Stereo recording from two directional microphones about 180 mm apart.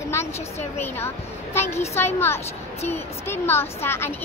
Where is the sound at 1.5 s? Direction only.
15° left (ahead or behind).